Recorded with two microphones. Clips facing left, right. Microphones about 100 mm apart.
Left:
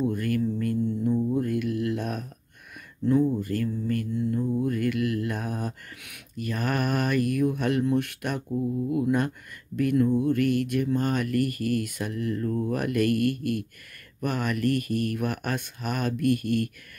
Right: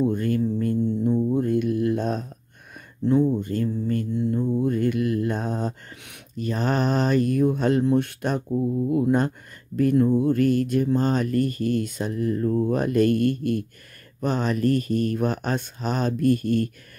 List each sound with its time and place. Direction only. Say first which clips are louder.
0.0 s music: right 3 dB; 25° right (ahead or behind)
3.0 s a sound: right 2 dB; 25° right (ahead or behind)
9.8 s speech: right 3 dB; 30° right (ahead or behind)